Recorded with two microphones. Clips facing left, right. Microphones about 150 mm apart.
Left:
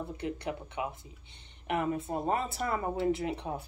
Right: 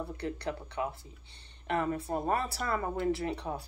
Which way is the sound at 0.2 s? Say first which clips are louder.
Left 1 dB; 20° left (ahead or behind).